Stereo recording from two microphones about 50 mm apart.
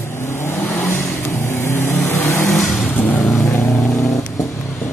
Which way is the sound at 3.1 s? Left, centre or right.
Centre.